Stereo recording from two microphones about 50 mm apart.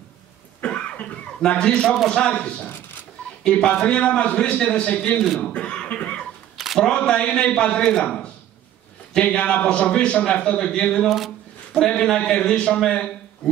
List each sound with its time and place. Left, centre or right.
0.6 s cough: left
1.6 s a man's voice: centre
2.6 s a sound: left
3.4 s a man's voice: centre
5.5 s cough: left
6.5 s camera: centre
6.8 s a man's voice: centre
11.1 s speech: centre
11.7 s a man's voice: centre